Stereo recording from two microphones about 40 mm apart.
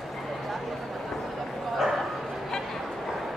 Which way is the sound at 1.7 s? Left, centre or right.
Centre.